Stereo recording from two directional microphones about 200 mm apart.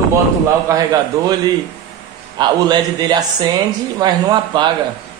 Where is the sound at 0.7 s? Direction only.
15° right (ahead or behind).